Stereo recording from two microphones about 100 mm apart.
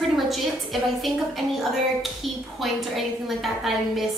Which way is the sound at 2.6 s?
Centre (ahead or behind).